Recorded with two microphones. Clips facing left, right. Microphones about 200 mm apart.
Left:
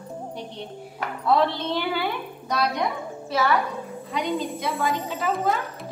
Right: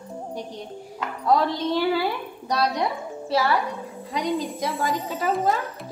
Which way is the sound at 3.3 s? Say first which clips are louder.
Right 1 dB; 30° right (ahead or behind).